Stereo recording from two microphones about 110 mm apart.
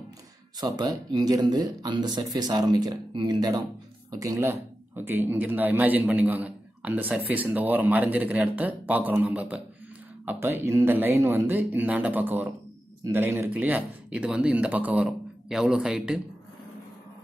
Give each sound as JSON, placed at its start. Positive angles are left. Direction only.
{"t": 0.6, "sound": "speech", "side_deg": -35}
{"t": 4.2, "sound": "a man's voice", "side_deg": -25}